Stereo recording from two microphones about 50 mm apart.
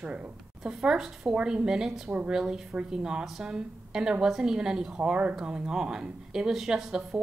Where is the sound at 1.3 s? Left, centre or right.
Centre.